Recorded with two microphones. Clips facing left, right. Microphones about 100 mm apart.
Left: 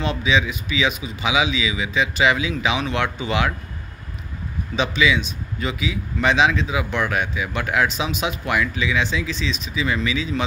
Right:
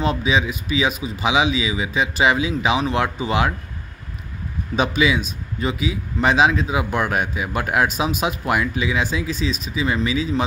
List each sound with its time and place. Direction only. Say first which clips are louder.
0.0 s a man's voice: right 1 dB; 40° right (ahead or behind)
4.7 s a man's voice: right 1 dB; 45° right (ahead or behind)